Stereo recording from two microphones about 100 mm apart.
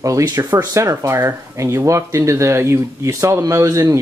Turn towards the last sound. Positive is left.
turn(degrees=-30)  # may be behind; listen again after turning